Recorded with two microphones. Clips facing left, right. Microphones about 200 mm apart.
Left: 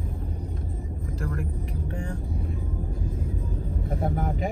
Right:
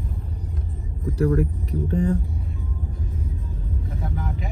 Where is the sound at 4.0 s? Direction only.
50° left (ahead or behind).